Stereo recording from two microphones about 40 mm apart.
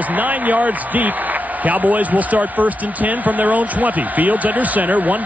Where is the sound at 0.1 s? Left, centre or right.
Right.